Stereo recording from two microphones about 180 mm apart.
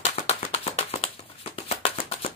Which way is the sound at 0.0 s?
40° left (ahead or behind).